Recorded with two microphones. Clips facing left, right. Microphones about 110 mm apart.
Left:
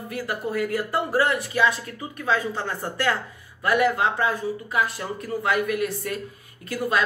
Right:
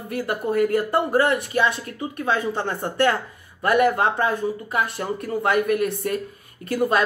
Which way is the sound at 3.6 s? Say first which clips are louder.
Right 3 dB; 50° right (ahead or behind).